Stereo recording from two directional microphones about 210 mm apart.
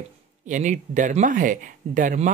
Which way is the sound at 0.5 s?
35° right (ahead or behind).